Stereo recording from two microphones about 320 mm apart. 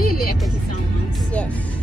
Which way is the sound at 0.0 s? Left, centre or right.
Left.